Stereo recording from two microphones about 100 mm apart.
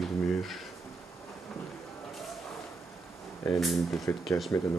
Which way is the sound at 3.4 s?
Centre (ahead or behind).